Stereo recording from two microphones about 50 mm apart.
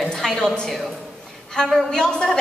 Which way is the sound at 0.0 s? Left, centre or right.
Centre.